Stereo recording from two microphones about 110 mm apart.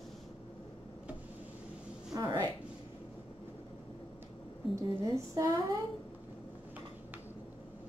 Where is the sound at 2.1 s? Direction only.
40° right (ahead or behind).